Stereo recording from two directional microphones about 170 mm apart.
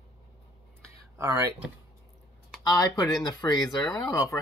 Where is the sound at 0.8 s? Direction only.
15° right (ahead or behind).